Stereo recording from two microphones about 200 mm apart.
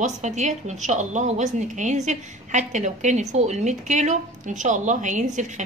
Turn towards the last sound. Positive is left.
turn(degrees=-35)  # may be behind; listen again after turning